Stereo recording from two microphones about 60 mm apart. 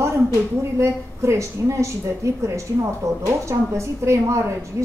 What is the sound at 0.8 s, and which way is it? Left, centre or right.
A woman's voice, right.